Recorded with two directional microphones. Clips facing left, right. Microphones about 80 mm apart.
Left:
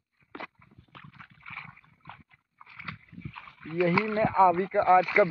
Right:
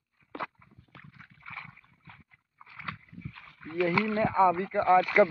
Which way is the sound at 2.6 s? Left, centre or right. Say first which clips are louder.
Right 2 dB; right.